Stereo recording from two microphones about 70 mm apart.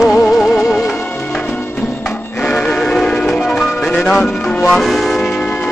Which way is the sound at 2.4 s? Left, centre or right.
Centre.